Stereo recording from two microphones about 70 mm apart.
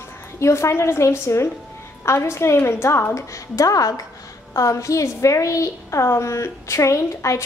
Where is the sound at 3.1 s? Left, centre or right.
Left.